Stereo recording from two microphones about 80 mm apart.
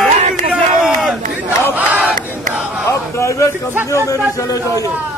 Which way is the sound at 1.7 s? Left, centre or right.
Centre.